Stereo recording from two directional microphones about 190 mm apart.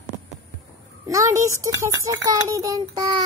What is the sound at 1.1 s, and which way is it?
A child's voice, 15° right (ahead or behind).